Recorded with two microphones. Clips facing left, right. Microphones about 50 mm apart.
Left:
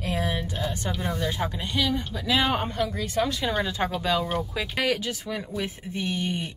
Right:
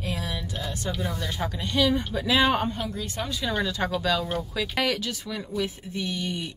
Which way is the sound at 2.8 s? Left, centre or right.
Left.